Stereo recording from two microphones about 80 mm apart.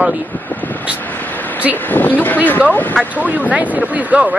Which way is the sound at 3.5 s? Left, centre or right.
Centre.